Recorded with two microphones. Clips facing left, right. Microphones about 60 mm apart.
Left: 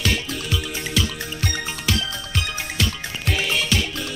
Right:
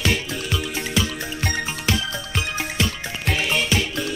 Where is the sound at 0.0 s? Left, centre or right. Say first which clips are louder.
Right 1 dB; centre.